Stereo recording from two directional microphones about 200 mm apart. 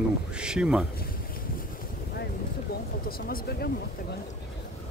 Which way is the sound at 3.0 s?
50° left (ahead or behind).